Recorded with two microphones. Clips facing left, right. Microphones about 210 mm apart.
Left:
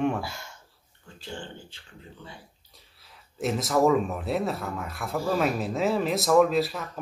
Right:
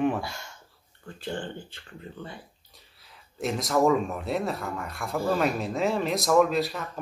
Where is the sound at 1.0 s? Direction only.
55° right (ahead or behind).